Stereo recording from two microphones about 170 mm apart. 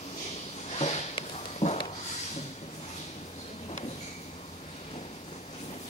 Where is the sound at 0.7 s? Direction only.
40° left (ahead or behind).